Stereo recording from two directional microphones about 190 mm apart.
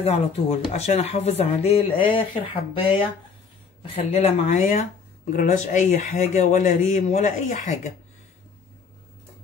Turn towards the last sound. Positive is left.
turn(degrees=40)  # may be behind; listen again after turning